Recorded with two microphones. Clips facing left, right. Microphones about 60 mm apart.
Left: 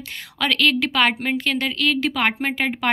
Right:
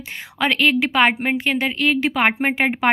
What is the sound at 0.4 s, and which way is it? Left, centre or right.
Speech, right.